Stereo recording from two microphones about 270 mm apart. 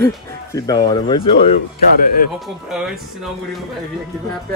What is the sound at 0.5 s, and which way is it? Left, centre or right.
Speech, centre.